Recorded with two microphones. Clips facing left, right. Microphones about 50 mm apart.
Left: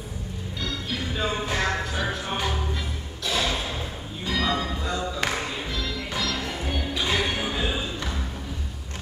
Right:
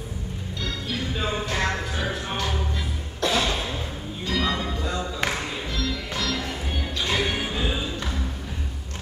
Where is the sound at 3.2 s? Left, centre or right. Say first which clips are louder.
Right 5 dB; right.